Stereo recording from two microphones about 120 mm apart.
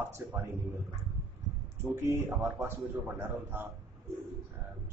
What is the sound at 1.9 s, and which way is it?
A man's voice, 25° right (ahead or behind).